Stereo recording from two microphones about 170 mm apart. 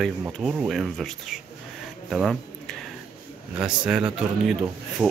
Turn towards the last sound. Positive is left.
turn(degrees=-5)  # may be behind; listen again after turning